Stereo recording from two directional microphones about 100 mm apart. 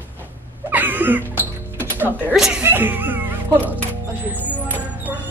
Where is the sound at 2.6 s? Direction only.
20° right (ahead or behind).